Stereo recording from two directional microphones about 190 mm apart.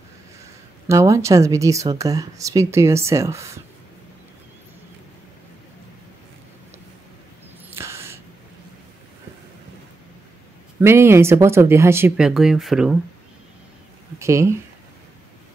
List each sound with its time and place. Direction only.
0.8 s speech: 15° right (ahead or behind)
7.7 s a sound: 15° right (ahead or behind)
10.8 s speech: 15° right (ahead or behind)
14.1 s speech: 15° right (ahead or behind)